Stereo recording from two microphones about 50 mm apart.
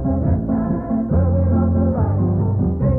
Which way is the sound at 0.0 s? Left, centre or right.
Centre.